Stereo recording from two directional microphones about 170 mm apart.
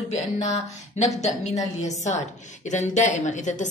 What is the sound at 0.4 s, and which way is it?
A woman's voice, 40° left (ahead or behind).